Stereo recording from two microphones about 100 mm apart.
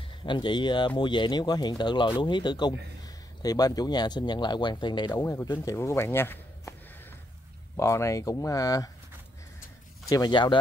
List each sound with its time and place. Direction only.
0.2 s speech: 50° left (ahead or behind)
5.1 s speech: 30° left (ahead or behind)
7.7 s speech: 30° left (ahead or behind)
10.0 s speech: 40° left (ahead or behind)